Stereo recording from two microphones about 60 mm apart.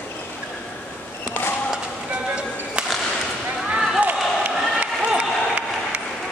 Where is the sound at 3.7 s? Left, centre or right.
Centre.